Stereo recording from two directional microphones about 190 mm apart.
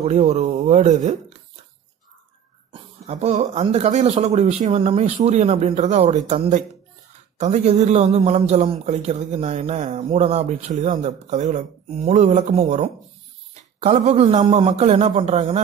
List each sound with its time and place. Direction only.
0.0 s a man's voice: 35° right (ahead or behind)
2.7 s a man's voice: 35° right (ahead or behind)